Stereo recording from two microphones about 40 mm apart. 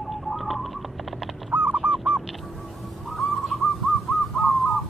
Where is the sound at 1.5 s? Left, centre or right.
Right.